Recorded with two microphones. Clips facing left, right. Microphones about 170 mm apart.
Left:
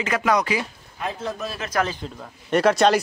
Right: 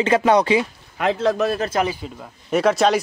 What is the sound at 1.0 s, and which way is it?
Speech, 85° right.